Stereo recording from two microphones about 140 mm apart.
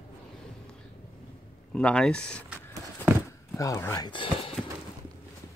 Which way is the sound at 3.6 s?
20° left (ahead or behind).